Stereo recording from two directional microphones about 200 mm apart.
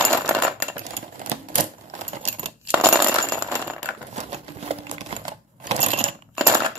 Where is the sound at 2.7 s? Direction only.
10° right (ahead or behind).